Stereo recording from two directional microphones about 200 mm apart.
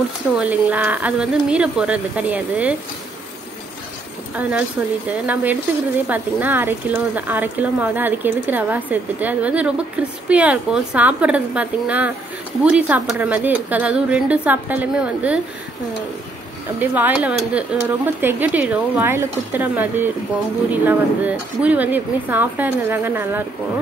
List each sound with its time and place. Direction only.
0.4 s speech: 5° right (ahead or behind)
4.4 s speech: 5° right (ahead or behind)
16.8 s speech: 10° right (ahead or behind)